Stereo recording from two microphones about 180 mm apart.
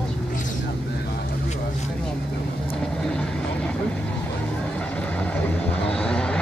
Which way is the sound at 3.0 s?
5° left (ahead or behind).